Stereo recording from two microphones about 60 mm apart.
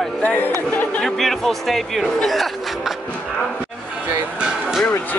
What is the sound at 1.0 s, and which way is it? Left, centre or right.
Speech, centre.